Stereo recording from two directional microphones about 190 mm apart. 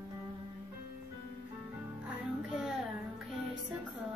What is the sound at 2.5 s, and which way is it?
Music, 5° right (ahead or behind).